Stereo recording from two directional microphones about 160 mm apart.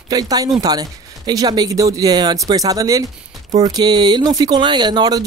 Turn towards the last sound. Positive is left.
turn(degrees=-25)  # may be behind; listen again after turning